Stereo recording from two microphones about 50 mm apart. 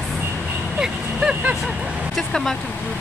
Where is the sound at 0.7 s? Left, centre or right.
Centre.